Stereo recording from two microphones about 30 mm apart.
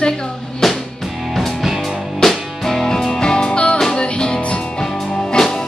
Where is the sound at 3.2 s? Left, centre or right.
Left.